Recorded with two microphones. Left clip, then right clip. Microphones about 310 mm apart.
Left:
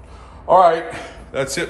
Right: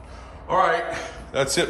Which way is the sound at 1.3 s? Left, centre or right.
Centre.